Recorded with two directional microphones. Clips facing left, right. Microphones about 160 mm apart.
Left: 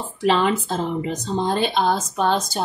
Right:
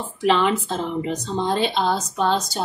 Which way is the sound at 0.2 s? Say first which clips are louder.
Even; 35° left (ahead or behind).